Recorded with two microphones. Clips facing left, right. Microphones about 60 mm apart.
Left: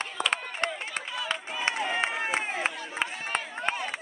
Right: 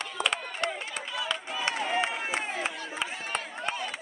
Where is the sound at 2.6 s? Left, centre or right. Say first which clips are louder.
Left 2 dB; left.